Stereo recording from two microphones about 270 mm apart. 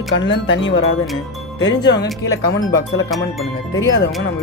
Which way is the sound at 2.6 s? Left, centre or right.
Centre.